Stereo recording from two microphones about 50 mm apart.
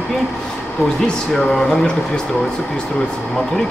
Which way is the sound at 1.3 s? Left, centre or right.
Centre.